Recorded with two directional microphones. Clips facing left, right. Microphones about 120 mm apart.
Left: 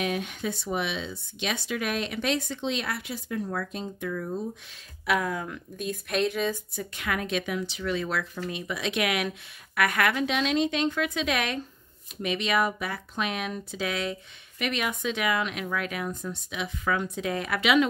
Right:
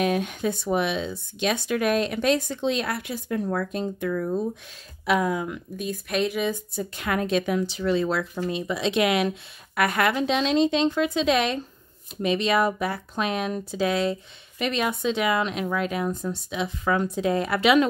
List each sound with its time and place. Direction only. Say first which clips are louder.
0.0 s speech: right 6 dB; 45° right (ahead or behind)
5.0 s speech: right 4 dB; 20° right (ahead or behind)
6.7 s speech: right 4 dB; 30° right (ahead or behind)